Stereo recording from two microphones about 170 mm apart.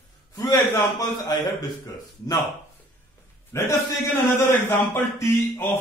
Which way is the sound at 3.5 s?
15° left (ahead or behind).